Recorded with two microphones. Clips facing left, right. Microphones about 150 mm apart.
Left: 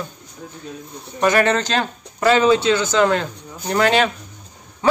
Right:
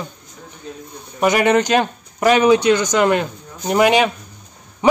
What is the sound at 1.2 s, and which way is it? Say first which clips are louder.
A man's voice: right 2 dB; 15° right (ahead or behind).